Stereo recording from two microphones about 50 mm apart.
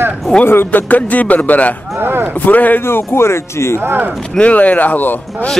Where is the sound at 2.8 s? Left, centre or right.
Left.